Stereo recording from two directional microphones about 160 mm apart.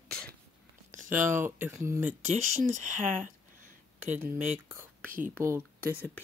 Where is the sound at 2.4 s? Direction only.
50° right (ahead or behind).